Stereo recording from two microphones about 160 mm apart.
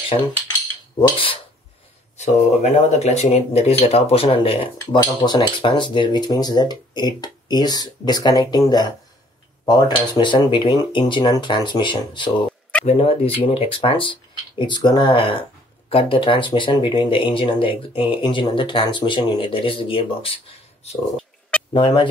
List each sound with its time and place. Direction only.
0.9 s speech: 30° left (ahead or behind)
2.6 s speech: 45° left (ahead or behind)
21.2 s a sound: 5° left (ahead or behind)
21.7 s speech: 30° left (ahead or behind)